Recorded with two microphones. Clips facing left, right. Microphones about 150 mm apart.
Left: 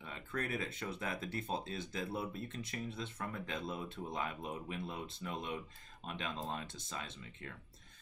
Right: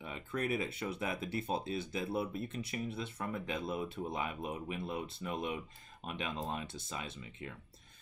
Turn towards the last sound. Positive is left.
turn(degrees=-10)  # may be behind; listen again after turning